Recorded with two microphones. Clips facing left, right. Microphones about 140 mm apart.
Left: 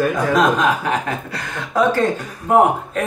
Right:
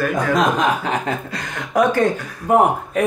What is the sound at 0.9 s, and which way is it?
Speech, 15° right (ahead or behind).